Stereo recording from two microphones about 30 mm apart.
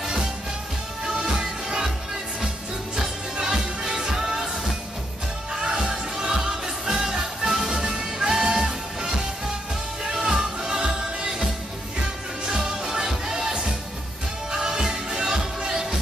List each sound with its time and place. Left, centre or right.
0.0 s music: centre
3.3 s music: right
12.4 s music: right